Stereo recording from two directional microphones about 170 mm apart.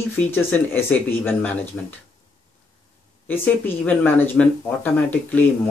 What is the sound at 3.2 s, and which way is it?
Speech, 10° left (ahead or behind).